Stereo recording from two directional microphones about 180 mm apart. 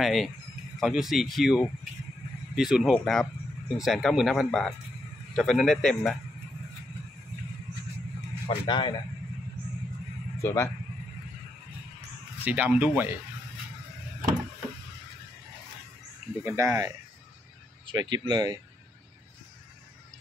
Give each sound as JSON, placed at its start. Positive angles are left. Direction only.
{"t": 0.0, "sound": "speech", "side_deg": 0}
{"t": 8.5, "sound": "a man's voice", "side_deg": 25}
{"t": 10.4, "sound": "speech", "side_deg": 15}
{"t": 12.4, "sound": "speech", "side_deg": -10}
{"t": 16.4, "sound": "speech", "side_deg": -15}